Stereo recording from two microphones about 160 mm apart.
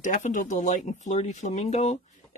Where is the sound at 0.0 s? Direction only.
50° left (ahead or behind).